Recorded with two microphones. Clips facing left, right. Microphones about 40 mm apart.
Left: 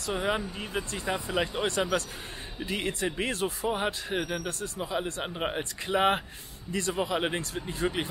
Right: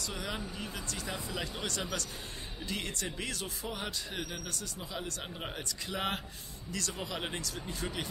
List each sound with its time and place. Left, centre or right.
0.0 s speech: left